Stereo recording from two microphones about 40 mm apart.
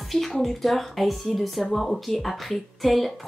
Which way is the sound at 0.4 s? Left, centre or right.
Centre.